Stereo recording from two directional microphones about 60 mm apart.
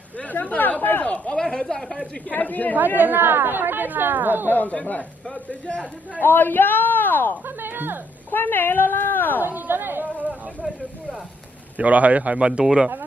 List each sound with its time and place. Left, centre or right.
0.2 s speech: left
1.0 s a sound: centre
2.2 s speech: left
3.0 s speech: right
4.5 s speech: left
6.2 s speech: left
7.4 s a woman's voice: right
8.3 s speech: left
9.4 s speech: right
11.7 s speech: right